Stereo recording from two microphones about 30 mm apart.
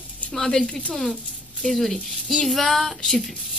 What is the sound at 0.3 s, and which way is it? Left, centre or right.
Speech, centre.